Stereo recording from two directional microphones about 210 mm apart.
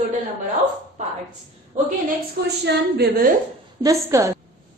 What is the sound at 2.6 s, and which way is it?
Speech, 50° right (ahead or behind).